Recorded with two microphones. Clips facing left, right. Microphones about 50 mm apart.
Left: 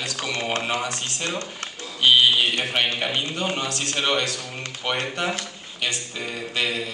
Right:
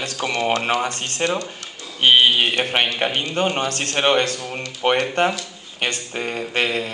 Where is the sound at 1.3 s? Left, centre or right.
Left.